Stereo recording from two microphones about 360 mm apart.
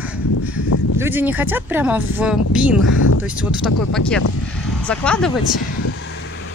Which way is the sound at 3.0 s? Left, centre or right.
Left.